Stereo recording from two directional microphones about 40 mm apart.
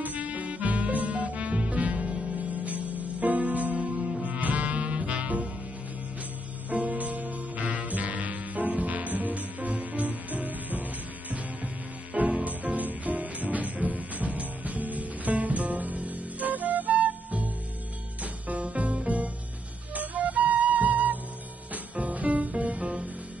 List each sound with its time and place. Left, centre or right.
0.0 s music: right
6.7 s music: right
12.1 s music: right
19.9 s flute: right
21.9 s music: right